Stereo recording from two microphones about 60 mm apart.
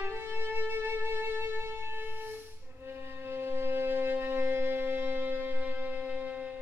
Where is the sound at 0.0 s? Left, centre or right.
Right.